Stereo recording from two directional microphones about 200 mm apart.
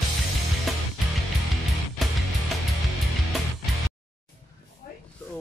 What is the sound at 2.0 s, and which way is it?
Music, centre (ahead or behind).